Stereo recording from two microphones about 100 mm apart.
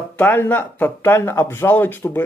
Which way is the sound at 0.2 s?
20° left (ahead or behind).